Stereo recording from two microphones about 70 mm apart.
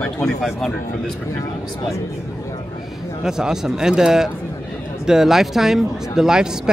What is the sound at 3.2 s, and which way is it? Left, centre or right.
Speech, centre.